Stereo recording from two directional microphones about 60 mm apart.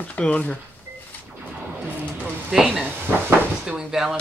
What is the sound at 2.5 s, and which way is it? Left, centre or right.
Speech, centre.